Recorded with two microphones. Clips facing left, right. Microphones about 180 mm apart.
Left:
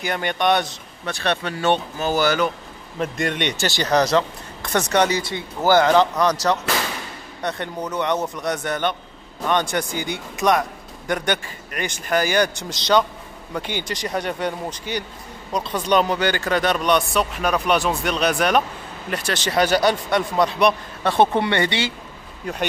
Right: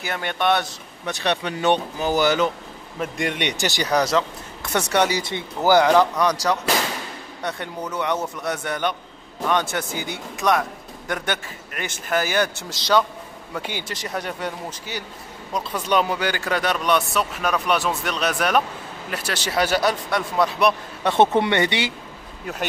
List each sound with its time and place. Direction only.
0.0 s speech: centre (ahead or behind)
1.0 s speech: 15° right (ahead or behind)
5.2 s speech: 20° right (ahead or behind); by 20.7 s centre (ahead or behind)
21.0 s speech: 20° right (ahead or behind)